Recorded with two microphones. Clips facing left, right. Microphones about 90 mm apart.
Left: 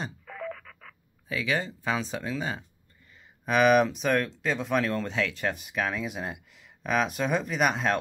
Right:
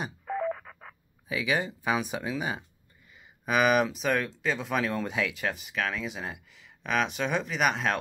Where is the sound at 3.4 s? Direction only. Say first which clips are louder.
Left 3 dB; 5° right (ahead or behind).